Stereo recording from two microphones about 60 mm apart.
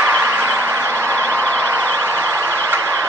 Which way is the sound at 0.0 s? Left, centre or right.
Right.